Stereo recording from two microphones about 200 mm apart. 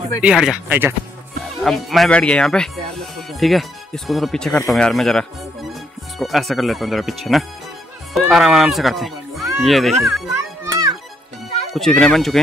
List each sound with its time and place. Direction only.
0.2 s speech: 5° right (ahead or behind)
10.3 s children playing: 15° right (ahead or behind)
11.7 s speech: 5° left (ahead or behind)